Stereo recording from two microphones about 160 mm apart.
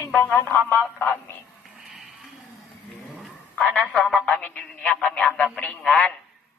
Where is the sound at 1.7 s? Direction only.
Centre (ahead or behind).